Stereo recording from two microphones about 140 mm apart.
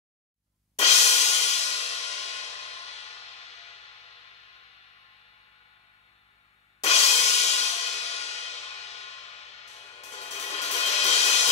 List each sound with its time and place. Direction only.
0.7 s music: 50° left (ahead or behind)
6.8 s music: 50° left (ahead or behind)